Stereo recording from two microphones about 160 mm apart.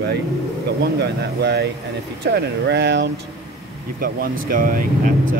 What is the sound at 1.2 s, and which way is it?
Speech, 90° right.